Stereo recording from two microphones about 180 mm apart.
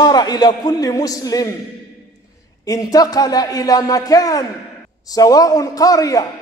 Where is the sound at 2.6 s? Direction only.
20° left (ahead or behind).